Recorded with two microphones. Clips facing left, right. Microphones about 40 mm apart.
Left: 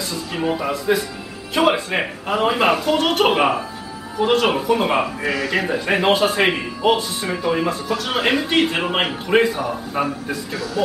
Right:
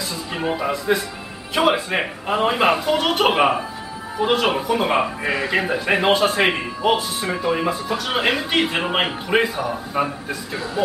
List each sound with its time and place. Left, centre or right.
0.1 s speech: centre
5.2 s a man's voice: right
5.7 s speech: centre
10.5 s a man's voice: right